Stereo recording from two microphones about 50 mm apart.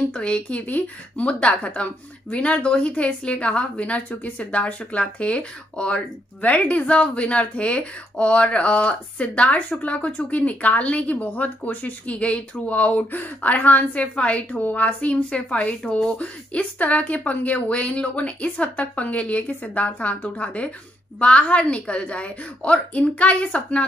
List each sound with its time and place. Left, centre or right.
0.1 s speech: left
0.7 s speech: left
1.2 s speech: left